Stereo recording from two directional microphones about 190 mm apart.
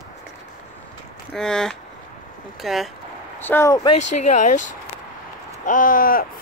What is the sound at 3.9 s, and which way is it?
Speech, 35° left (ahead or behind).